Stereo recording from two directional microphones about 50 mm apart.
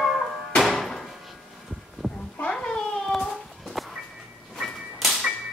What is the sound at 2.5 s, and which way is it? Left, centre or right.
Cat, centre.